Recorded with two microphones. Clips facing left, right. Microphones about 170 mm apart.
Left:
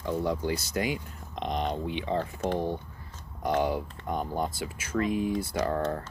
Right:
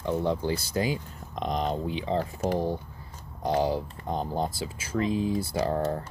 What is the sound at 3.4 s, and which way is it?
Speech, 30° right (ahead or behind).